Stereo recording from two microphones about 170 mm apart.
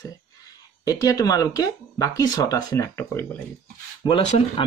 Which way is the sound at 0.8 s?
20° left (ahead or behind).